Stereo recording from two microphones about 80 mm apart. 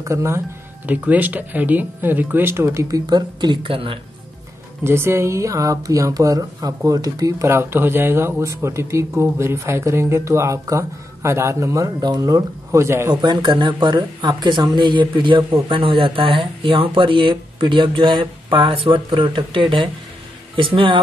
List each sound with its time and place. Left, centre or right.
0.0 s speech: right
0.8 s speech: centre; by 3.0 s right
3.1 s speech: right
4.8 s speech: right
12.0 s speech: right
12.8 s speech: right
13.1 s speech: right
14.8 s speech: right